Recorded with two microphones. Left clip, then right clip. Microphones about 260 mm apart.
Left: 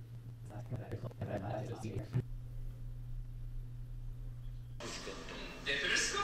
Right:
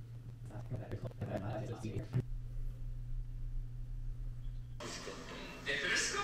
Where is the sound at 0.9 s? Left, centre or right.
Centre.